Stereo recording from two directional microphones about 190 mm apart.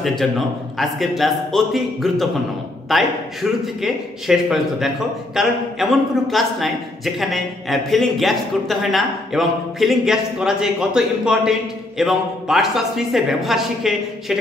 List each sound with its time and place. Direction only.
0.0 s a man's voice: centre (ahead or behind)